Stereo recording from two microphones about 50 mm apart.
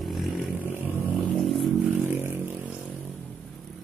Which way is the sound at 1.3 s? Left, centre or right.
Centre.